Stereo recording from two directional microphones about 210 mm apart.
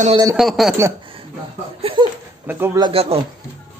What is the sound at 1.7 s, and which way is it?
Laughter, 25° right (ahead or behind).